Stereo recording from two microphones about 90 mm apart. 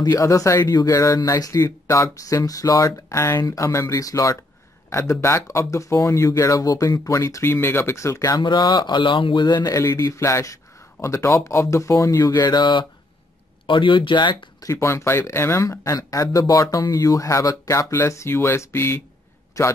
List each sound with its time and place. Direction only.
0.0 s speech: 40° left (ahead or behind)
0.7 s speech: 50° left (ahead or behind)
8.4 s speech: 60° left (ahead or behind)
14.6 s speech: 35° left (ahead or behind)
19.6 s a man's voice: 35° left (ahead or behind)